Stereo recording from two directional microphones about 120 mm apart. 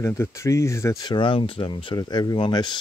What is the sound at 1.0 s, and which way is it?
Speech, 40° left (ahead or behind).